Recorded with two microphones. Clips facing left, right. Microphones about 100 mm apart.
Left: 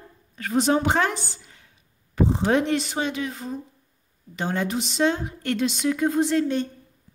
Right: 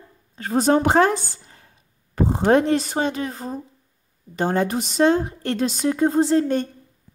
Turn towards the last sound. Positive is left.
turn(degrees=-40)  # may be behind; listen again after turning